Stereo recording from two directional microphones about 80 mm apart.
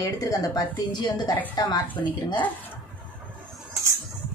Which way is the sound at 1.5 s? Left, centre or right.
Left.